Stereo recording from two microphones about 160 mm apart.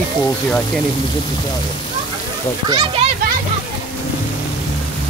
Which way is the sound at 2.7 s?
35° right (ahead or behind).